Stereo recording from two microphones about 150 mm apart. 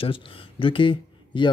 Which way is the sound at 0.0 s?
35° left (ahead or behind).